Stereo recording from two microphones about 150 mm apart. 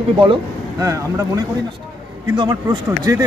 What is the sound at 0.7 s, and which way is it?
Speech, 20° right (ahead or behind).